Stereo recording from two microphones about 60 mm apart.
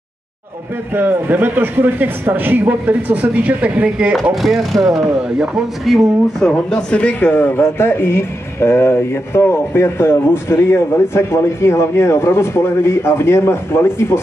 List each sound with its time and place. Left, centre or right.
0.9 s a man's voice: right
4.1 s speech: centre
5.9 s speech: centre
6.5 s speech: centre
7.1 s speech: left